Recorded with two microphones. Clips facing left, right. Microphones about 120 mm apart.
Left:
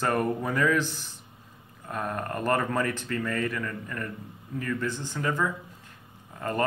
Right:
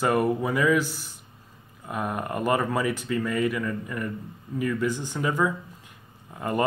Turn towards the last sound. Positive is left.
turn(degrees=-15)  # may be behind; listen again after turning